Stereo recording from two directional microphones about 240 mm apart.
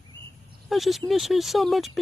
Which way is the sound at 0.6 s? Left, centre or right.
Centre.